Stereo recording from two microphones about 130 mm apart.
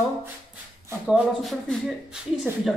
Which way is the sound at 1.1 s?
5° right (ahead or behind).